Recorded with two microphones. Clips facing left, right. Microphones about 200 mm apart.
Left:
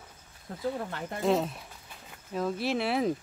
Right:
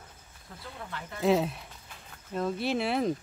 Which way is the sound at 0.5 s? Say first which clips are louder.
Left 7 dB; 40° left (ahead or behind).